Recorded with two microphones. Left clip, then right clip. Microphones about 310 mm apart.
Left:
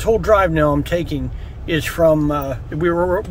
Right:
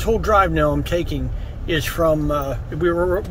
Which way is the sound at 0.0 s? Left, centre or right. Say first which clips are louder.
Left 2 dB; centre.